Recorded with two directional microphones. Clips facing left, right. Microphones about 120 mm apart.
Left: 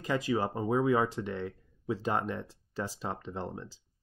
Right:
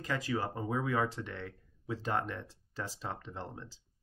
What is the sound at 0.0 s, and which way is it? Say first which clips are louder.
Speech: left 5 dB; 20° left (ahead or behind).